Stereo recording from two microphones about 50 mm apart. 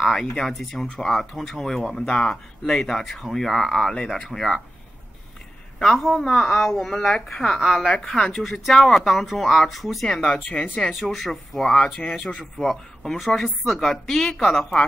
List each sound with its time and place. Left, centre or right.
0.0 s a woman's voice: centre
5.8 s a woman's voice: centre
10.2 s a woman's voice: centre
10.9 s a woman's voice: centre